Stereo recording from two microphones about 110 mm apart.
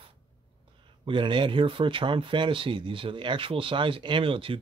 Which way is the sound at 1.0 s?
50° right (ahead or behind).